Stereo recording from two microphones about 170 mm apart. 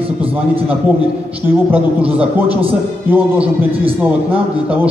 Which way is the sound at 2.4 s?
35° right (ahead or behind).